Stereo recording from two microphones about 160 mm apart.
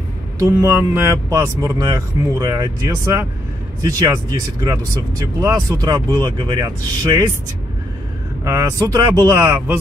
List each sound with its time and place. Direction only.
0.4 s speech: 20° right (ahead or behind)
8.5 s speech: 20° right (ahead or behind)